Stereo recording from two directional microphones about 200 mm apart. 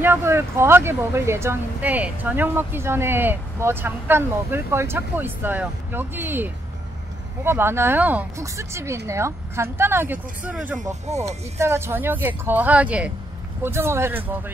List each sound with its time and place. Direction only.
0.0 s a woman's voice: 10° right (ahead or behind)
11.1 s speech: 35° right (ahead or behind)
11.5 s a woman's voice: 15° right (ahead or behind)